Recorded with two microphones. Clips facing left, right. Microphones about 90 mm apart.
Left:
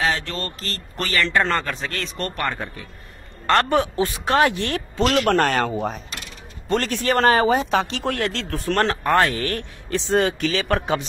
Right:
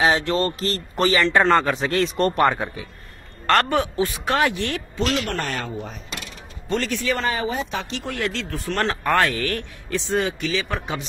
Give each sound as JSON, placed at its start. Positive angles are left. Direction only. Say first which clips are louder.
{"t": 0.0, "sound": "speech", "louder": "right 5 dB", "side_deg": -20}
{"t": 1.4, "sound": "a man's voice", "louder": "right 5 dB", "side_deg": -10}
{"t": 1.7, "sound": "speech", "louder": "right 7 dB", "side_deg": -20}
{"t": 2.5, "sound": "speech", "louder": "right 4 dB", "side_deg": -5}
{"t": 3.4, "sound": "a man's voice", "louder": "even", "side_deg": 15}
{"t": 3.9, "sound": "speech", "louder": "left 2 dB", "side_deg": 30}
{"t": 5.3, "sound": "speech", "louder": "left 8 dB", "side_deg": 75}
{"t": 6.7, "sound": "speech", "louder": "left 3 dB", "side_deg": 50}
{"t": 8.2, "sound": "speech", "louder": "left 1 dB", "side_deg": 40}
{"t": 10.2, "sound": "speech", "louder": "left 3 dB", "side_deg": 50}